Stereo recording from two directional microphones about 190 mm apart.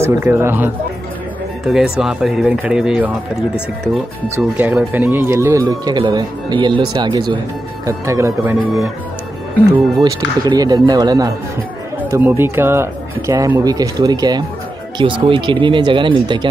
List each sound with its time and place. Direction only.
0.0 s speech: 15° right (ahead or behind)
1.7 s speech: 5° right (ahead or behind)
10.0 s speech: 20° right (ahead or behind)